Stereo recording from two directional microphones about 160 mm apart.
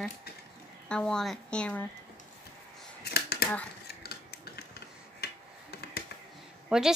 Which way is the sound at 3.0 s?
85° left.